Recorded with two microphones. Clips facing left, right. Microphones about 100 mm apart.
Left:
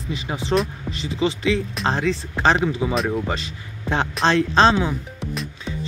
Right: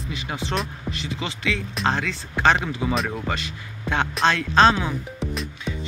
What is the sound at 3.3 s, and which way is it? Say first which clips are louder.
Speech: left 1 dB; 30° left (ahead or behind).